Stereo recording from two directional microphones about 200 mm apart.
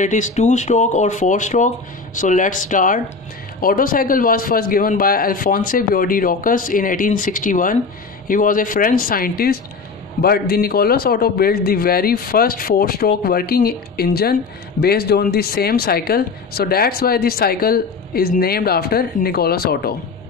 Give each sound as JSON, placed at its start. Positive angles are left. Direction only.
{"t": 0.0, "sound": "speech", "side_deg": 40}